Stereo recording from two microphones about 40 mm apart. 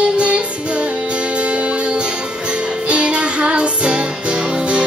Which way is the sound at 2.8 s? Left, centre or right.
Right.